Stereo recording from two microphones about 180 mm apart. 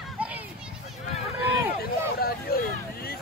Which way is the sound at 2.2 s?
55° left (ahead or behind).